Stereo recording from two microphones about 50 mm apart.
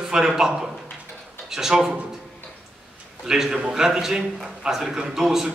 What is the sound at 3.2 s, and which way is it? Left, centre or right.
A man's voice, centre.